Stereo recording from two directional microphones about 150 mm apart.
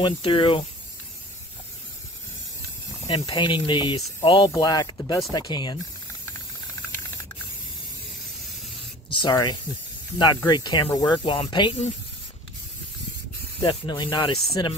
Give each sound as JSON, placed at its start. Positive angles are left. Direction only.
{"t": 0.0, "sound": "speech", "side_deg": 35}
{"t": 3.1, "sound": "speech", "side_deg": 35}
{"t": 9.1, "sound": "speech", "side_deg": 30}
{"t": 13.6, "sound": "speech", "side_deg": 30}